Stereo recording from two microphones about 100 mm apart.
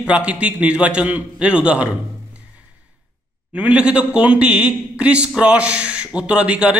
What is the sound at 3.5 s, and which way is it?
A man's voice, 15° right (ahead or behind).